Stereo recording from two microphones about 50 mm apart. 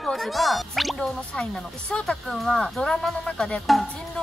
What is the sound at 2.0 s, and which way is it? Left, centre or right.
Speech, centre.